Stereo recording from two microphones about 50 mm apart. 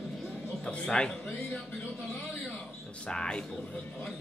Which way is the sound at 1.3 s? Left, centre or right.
Centre.